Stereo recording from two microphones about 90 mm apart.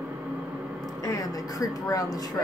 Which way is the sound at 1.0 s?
40° left (ahead or behind).